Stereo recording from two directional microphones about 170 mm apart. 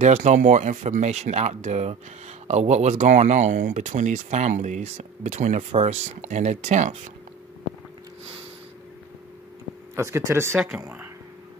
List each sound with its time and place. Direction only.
0.0 s speech: 45° right (ahead or behind)
9.9 s speech: 15° right (ahead or behind)